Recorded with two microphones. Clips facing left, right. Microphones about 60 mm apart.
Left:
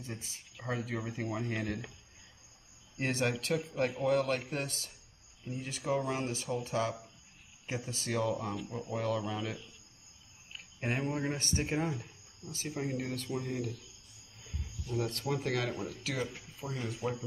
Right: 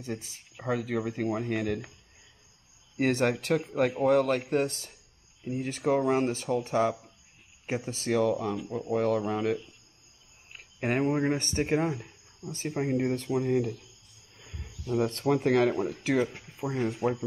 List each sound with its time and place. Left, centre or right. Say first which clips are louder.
0.7 s speech: right 7 dB; right
3.0 s speech: right 7 dB; right
5.6 s speech: right 7 dB; right
8.5 s speech: right 6 dB; centre
8.9 s speech: right 8 dB; right
10.9 s speech: right 8 dB; right
14.7 s a sound: right 7 dB; right
15.1 s speech: right 10 dB; right